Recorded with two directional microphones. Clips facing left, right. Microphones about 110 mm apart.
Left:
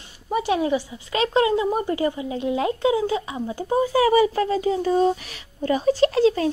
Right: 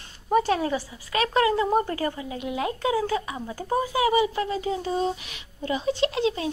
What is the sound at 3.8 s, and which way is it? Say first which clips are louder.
Speech: left 5 dB; 35° left (ahead or behind).